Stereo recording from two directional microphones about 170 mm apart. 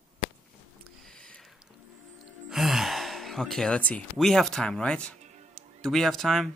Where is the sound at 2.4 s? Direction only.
Centre (ahead or behind).